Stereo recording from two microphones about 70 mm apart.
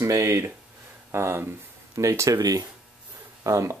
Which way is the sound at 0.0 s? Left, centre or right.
Right.